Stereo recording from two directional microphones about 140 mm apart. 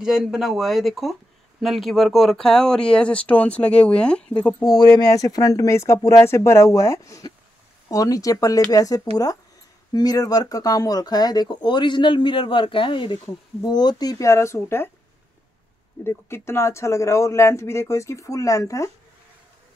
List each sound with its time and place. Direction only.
0.0 s speech: 5° right (ahead or behind)
5.1 s a man's voice: 25° left (ahead or behind)
16.0 s a man's voice: 20° left (ahead or behind)